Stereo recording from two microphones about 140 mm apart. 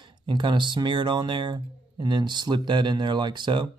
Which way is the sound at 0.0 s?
35° right (ahead or behind).